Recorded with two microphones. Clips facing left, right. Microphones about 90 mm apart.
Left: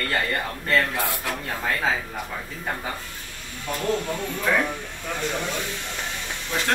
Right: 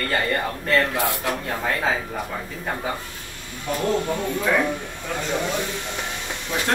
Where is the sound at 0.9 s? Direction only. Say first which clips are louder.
Right 4 dB; 20° right (ahead or behind).